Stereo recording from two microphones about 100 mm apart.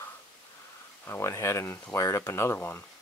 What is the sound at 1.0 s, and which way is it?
Speech, 25° left (ahead or behind).